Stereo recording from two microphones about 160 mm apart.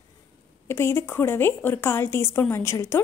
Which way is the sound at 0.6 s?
15° left (ahead or behind).